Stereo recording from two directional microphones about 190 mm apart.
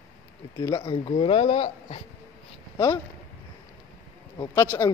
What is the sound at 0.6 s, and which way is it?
Speech, 25° left (ahead or behind).